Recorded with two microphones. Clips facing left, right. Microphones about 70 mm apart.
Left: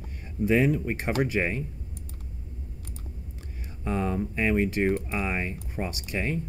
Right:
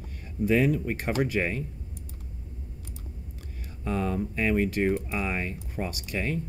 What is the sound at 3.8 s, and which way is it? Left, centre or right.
Speech, left.